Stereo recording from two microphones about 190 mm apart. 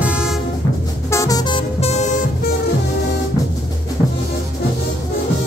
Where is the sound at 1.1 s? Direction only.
20° left (ahead or behind); by 2.2 s 40° left (ahead or behind).